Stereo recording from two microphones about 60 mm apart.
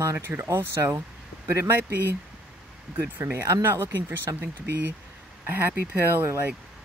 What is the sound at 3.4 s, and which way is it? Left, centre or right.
Speech, right.